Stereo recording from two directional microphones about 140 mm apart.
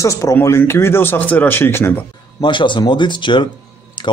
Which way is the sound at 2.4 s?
35° left (ahead or behind).